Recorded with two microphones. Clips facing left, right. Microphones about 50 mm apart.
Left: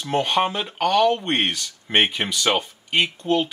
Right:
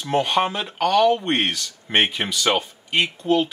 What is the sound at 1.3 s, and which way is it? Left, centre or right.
Speech, centre.